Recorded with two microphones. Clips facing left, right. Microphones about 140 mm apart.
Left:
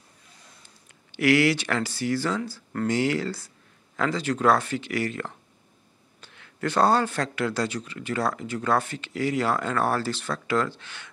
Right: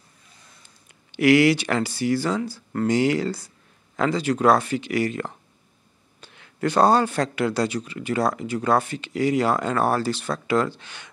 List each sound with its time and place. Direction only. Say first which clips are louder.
1.1 s speech: right 4 dB; 15° right (ahead or behind)